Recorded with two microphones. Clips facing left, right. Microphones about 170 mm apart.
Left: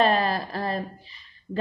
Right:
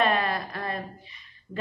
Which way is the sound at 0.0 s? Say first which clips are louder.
Left 3 dB; 30° left (ahead or behind).